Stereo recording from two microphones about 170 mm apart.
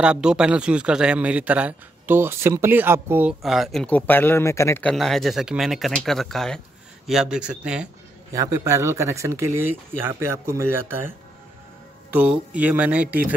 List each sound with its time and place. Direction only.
0.0 s a man's voice: 5° right (ahead or behind); by 4.9 s 15° left (ahead or behind)
4.9 s a man's voice: centre (ahead or behind)
8.3 s speech: 20° right (ahead or behind)